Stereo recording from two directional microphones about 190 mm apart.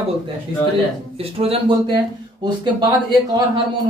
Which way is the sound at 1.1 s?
30° right (ahead or behind).